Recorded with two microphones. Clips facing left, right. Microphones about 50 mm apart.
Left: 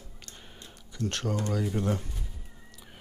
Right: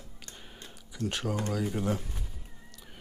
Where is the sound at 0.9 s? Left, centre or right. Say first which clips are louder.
Left 1 dB; centre.